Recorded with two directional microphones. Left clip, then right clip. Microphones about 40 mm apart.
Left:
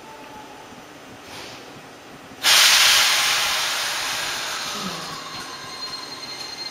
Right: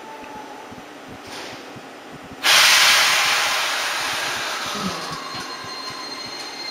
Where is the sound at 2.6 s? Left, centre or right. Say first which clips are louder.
Right 1 dB; centre.